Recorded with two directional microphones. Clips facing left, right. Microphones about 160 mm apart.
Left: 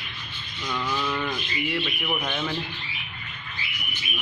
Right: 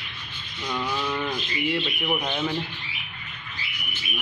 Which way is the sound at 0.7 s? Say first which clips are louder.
Even; 15° right (ahead or behind).